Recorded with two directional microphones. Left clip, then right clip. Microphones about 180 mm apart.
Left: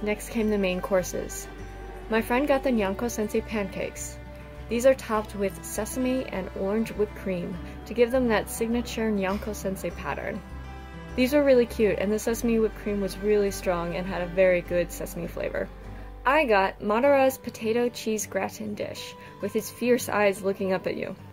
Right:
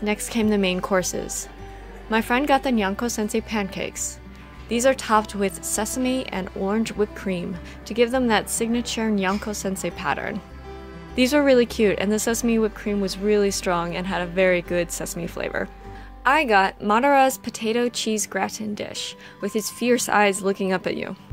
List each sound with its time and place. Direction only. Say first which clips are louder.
0.0 s a woman's voice: right 4 dB; 50° right (ahead or behind)